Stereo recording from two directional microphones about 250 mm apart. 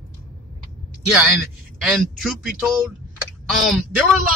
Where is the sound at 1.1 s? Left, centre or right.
Centre.